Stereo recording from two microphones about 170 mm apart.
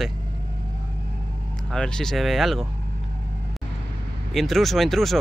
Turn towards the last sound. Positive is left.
turn(degrees=0)  # may be behind; listen again after turning